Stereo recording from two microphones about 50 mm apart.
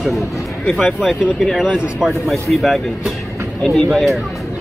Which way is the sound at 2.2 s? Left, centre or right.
Centre.